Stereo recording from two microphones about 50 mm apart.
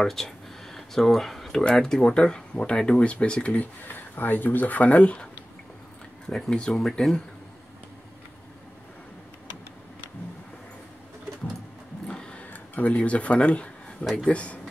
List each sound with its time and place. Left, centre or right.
0.0 s speech: centre
0.7 s a sound: centre
1.8 s speech: centre
3.8 s speech: left
6.2 s speech: centre
12.1 s vehicle: left
12.7 s speech: left